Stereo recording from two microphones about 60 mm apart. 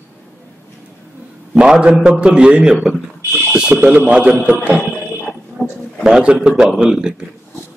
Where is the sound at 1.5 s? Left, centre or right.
Centre.